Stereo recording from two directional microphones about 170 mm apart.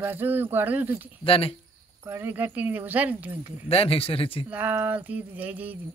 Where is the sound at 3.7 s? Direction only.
35° left (ahead or behind).